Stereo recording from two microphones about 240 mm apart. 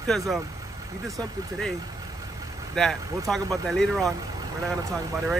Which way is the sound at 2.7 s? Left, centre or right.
Centre.